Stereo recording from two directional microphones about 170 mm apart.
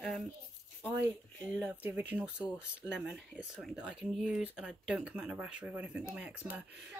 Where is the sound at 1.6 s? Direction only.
10° right (ahead or behind).